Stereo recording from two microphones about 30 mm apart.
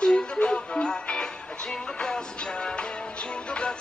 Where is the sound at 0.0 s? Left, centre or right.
Left.